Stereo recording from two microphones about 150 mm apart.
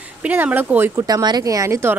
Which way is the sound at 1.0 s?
25° right (ahead or behind).